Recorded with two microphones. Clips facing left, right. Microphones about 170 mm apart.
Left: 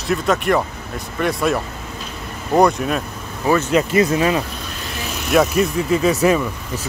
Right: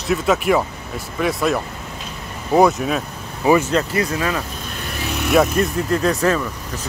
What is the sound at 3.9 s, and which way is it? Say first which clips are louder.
Speech: left 5 dB; 20° left (ahead or behind).